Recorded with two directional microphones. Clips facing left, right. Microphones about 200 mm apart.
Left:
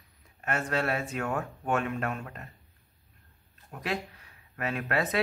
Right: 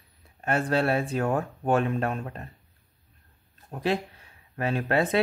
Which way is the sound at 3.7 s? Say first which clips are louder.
Right 6 dB; 30° right (ahead or behind).